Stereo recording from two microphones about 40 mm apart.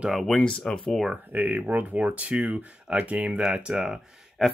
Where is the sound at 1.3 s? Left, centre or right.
Right.